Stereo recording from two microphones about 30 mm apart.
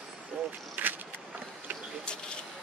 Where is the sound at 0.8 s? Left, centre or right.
Right.